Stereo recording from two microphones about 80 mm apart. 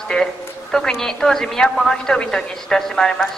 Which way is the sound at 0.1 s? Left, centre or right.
Centre.